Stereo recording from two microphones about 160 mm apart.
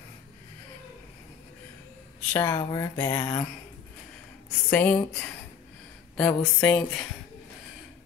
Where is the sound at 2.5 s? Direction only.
20° left (ahead or behind).